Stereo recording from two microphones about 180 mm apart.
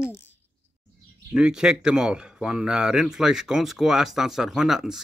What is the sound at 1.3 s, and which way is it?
Speech, 5° right (ahead or behind).